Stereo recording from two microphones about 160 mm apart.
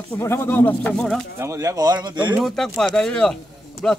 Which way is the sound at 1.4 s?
20° right (ahead or behind).